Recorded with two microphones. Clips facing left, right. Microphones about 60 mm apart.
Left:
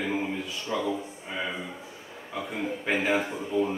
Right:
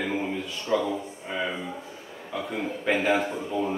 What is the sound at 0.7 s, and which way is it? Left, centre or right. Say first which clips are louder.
Speech: right 6 dB; centre.